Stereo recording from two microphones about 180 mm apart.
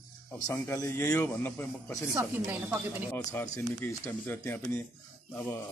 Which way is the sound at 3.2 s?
10° left (ahead or behind).